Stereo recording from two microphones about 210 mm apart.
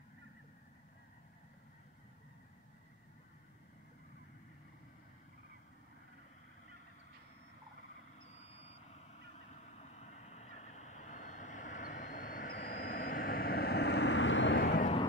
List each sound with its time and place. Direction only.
8.4 s vehicle: 30° left (ahead or behind); by 14.8 s 60° left (ahead or behind)